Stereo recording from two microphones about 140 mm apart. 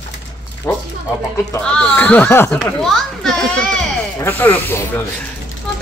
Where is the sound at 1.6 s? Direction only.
10° left (ahead or behind).